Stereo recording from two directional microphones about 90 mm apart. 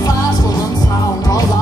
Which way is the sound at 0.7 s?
45° left (ahead or behind).